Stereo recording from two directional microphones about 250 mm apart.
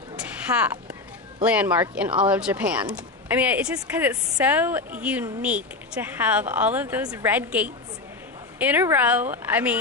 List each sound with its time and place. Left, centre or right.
0.5 s speech: centre